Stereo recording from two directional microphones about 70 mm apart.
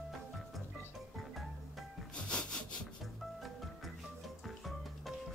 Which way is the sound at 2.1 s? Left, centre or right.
Centre.